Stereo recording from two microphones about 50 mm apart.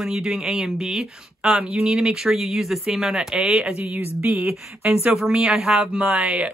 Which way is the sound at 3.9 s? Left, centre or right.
Right.